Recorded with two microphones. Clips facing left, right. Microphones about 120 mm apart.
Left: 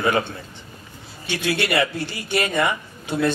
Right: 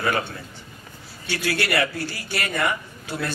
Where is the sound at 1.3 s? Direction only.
20° left (ahead or behind).